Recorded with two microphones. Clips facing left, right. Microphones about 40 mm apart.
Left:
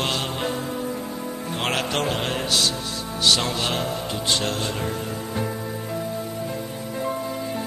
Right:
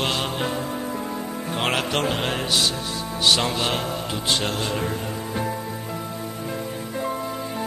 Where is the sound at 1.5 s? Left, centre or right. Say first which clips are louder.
Right 1 dB; centre.